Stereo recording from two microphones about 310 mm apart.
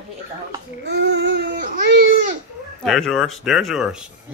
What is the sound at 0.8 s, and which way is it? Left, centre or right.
Babbling, right.